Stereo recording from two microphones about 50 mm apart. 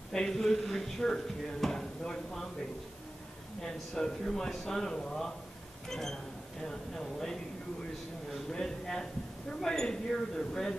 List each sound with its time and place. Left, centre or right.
0.1 s speech: centre
3.6 s speech: centre